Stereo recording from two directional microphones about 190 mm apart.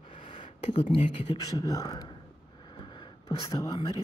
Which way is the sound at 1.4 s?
20° left (ahead or behind).